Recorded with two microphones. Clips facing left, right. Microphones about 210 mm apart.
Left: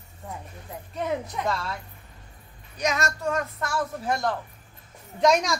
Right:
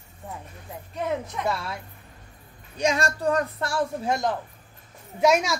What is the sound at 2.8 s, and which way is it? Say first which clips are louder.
Speech: right 3 dB; 30° right (ahead or behind).